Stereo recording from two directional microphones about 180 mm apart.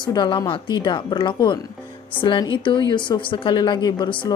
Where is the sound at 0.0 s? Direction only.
25° left (ahead or behind).